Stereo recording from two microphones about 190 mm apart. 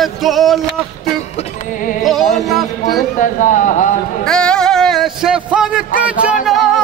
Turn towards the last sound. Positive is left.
turn(degrees=-5)  # may be behind; listen again after turning